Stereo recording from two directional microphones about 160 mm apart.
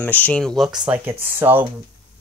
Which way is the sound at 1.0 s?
15° right (ahead or behind).